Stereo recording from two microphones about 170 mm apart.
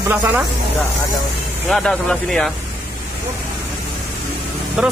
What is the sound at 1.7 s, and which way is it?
Speech, 5° left (ahead or behind).